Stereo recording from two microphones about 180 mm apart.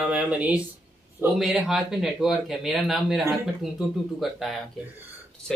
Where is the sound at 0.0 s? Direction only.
5° right (ahead or behind).